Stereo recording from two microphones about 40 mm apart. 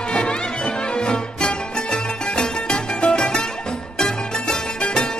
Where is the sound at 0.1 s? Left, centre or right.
Left.